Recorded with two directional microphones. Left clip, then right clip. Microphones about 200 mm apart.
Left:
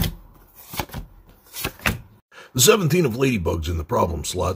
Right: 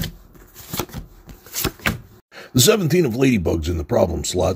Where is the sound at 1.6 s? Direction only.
Centre (ahead or behind).